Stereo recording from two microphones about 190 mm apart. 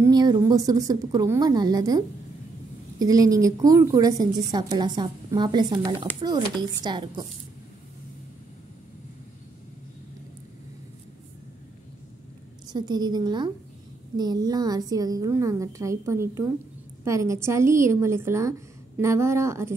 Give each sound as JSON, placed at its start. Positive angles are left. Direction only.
{"t": 0.0, "sound": "a woman's voice", "side_deg": -20}
{"t": 12.7, "sound": "a woman's voice", "side_deg": -20}